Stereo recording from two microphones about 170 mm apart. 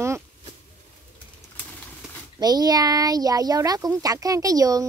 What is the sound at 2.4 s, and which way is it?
Speech, 25° right (ahead or behind).